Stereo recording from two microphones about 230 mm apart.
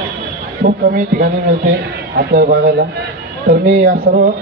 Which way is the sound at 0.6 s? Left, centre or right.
Right.